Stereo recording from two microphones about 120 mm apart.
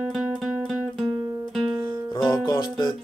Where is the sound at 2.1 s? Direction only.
40° left (ahead or behind).